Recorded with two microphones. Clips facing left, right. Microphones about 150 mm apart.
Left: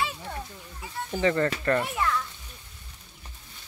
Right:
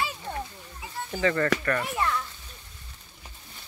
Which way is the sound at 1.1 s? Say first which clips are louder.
Even; 20° left (ahead or behind).